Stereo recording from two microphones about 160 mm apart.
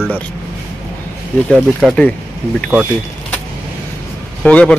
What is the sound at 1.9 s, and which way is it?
Speech, 5° left (ahead or behind).